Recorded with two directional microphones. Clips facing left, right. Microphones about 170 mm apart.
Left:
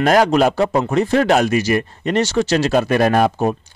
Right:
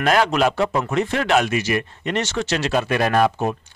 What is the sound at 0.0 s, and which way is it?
A man's voice, 40° left (ahead or behind).